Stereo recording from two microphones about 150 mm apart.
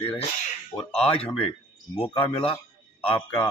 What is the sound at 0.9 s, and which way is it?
Speech, 40° left (ahead or behind).